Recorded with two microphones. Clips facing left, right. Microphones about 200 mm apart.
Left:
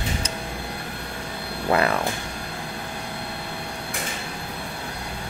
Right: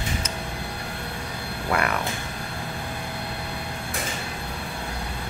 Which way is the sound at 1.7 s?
30° left (ahead or behind).